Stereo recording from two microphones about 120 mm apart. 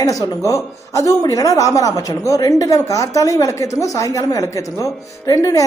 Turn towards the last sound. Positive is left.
turn(degrees=30)  # may be behind; listen again after turning